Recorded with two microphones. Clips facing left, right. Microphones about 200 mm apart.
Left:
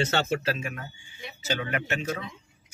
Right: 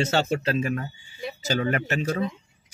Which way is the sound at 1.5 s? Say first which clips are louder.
Right 4 dB; 40° right (ahead or behind).